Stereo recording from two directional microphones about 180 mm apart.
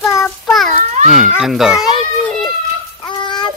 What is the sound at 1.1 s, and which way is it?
Children playing, centre (ahead or behind).